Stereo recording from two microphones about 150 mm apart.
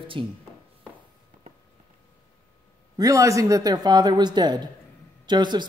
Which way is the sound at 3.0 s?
20° right (ahead or behind).